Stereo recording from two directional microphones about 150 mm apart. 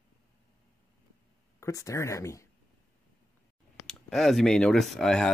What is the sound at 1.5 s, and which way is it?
Speech, 20° left (ahead or behind).